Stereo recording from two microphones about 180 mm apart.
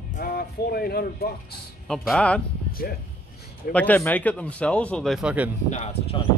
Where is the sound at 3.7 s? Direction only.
10° left (ahead or behind).